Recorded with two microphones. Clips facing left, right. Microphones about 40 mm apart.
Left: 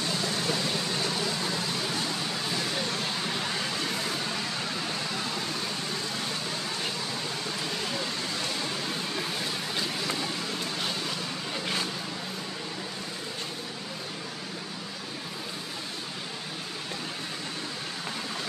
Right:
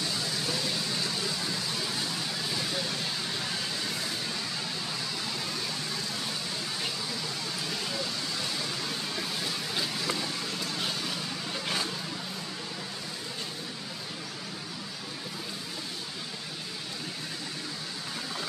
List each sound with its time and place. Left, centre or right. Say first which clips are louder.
0.4 s vehicle: left 3 dB; left
11.5 s vehicle: left 1 dB; centre